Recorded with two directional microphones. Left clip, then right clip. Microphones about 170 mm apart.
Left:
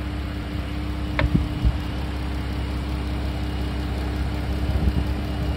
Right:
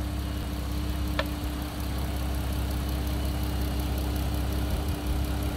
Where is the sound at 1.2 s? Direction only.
35° left (ahead or behind).